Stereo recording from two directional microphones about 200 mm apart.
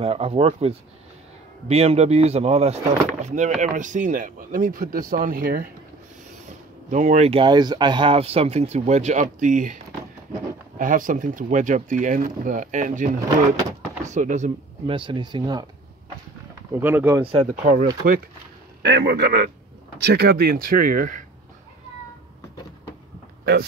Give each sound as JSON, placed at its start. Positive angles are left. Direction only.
{"t": 0.0, "sound": "speech", "side_deg": -30}
{"t": 6.9, "sound": "speech", "side_deg": -40}
{"t": 10.8, "sound": "speech", "side_deg": -40}
{"t": 16.8, "sound": "speech", "side_deg": -10}
{"t": 17.2, "sound": "speech", "side_deg": -30}